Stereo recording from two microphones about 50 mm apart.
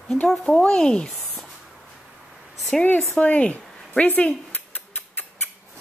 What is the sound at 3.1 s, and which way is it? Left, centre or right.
Speech, left.